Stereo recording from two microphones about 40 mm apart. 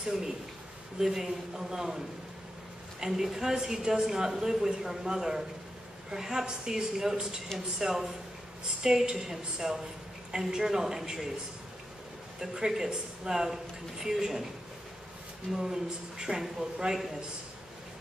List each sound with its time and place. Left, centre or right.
0.0 s speech: centre
12.4 s speech: centre
15.5 s speech: centre